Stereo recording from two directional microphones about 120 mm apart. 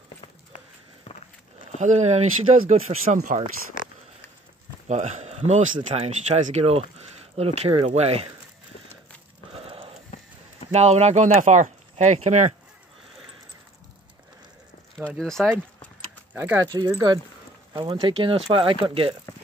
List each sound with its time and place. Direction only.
1.8 s speech: 80° right
4.8 s speech: 70° right (ahead or behind)
9.5 s a sound: 50° right (ahead or behind)
10.7 s speech: 65° right (ahead or behind)
15.0 s speech: 5° left (ahead or behind)
16.3 s speech: 20° right (ahead or behind)
16.7 s speech: 35° right (ahead or behind)